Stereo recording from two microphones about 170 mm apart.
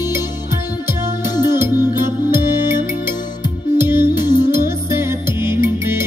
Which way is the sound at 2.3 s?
25° left (ahead or behind).